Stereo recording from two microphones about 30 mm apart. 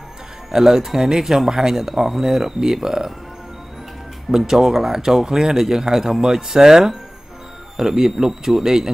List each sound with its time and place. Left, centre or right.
0.5 s speech: centre
4.3 s speech: centre